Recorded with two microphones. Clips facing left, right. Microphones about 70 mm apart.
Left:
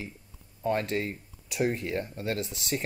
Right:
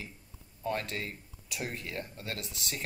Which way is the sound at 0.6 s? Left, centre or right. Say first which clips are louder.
Left 6 dB; left.